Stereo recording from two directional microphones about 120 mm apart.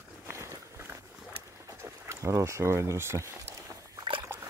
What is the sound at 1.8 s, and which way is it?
Speech, 20° right (ahead or behind).